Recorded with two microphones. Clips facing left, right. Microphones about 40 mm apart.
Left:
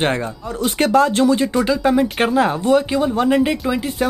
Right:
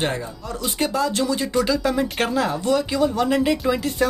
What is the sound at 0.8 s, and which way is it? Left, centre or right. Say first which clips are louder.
Speech: left 8 dB; left.